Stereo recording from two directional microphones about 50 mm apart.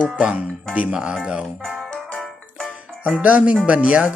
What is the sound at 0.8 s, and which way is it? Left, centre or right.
Speech, centre.